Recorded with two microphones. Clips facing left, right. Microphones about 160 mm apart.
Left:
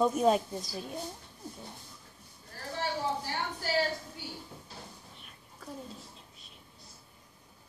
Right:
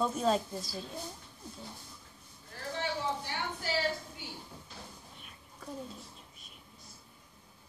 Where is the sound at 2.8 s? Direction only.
40° left (ahead or behind).